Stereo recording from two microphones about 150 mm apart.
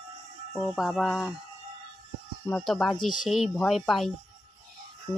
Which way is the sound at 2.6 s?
Centre (ahead or behind).